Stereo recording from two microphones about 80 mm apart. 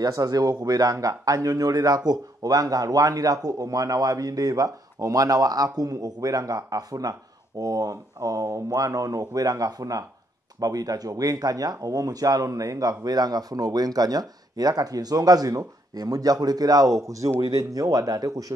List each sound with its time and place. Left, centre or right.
0.0 s speech: right